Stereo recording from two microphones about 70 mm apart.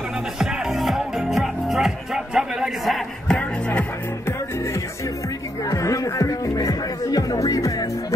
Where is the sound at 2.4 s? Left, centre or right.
Centre.